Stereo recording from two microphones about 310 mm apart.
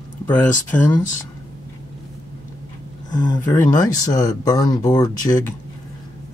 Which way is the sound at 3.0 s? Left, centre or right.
Centre.